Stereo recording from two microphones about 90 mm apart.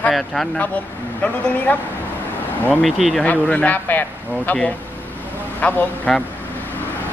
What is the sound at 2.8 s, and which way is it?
Speech, centre (ahead or behind).